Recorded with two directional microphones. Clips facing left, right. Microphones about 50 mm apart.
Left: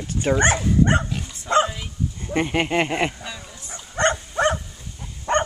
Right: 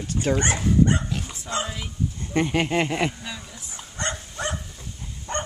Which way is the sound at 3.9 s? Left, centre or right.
Left.